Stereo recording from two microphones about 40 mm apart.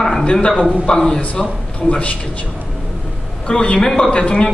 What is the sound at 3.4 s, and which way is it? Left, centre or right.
A man's voice, left.